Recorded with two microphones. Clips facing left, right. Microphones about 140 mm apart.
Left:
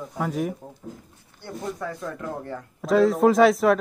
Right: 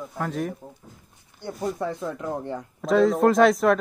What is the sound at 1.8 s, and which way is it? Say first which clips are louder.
Speech: right 3 dB; 20° right (ahead or behind).